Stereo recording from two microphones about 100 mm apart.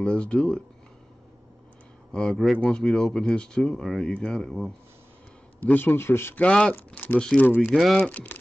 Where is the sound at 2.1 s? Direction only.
5° left (ahead or behind).